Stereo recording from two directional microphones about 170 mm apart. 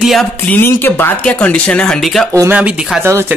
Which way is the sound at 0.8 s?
10° left (ahead or behind).